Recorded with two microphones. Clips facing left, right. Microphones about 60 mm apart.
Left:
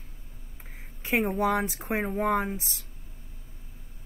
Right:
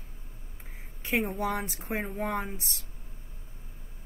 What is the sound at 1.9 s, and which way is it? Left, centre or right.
Speech, left.